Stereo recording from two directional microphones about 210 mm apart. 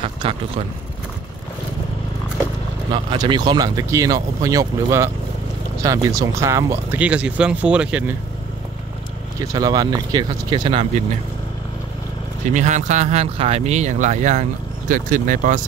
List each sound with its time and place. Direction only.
0.0 s a sound: 25° right (ahead or behind)
2.9 s speech: 20° right (ahead or behind); by 8.2 s 5° right (ahead or behind)
9.4 s speech: 15° right (ahead or behind)
12.4 s speech: 35° right (ahead or behind)